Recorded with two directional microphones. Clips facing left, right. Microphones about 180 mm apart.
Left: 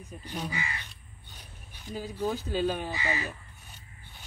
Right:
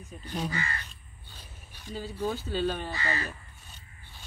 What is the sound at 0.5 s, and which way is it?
Speech, 15° left (ahead or behind).